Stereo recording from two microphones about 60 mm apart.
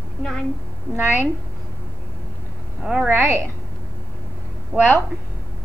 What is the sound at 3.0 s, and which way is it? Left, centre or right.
Speech, right.